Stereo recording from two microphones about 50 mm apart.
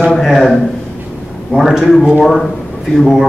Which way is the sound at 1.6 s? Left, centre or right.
Centre.